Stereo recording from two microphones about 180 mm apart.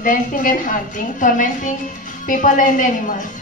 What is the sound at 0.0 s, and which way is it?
Speech, 45° left (ahead or behind).